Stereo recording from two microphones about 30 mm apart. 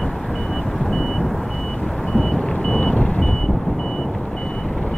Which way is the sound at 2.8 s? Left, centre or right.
Left.